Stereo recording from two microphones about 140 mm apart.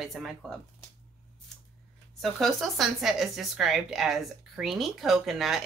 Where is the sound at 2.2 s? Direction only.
Centre (ahead or behind).